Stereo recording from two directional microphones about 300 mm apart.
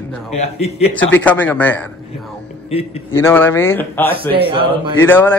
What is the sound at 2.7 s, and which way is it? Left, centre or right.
Speech, centre.